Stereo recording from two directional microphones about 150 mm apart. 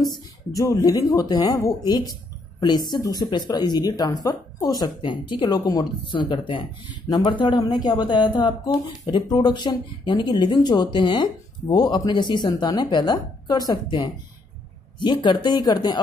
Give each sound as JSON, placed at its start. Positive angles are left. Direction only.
{"t": 0.5, "sound": "speech", "side_deg": 25}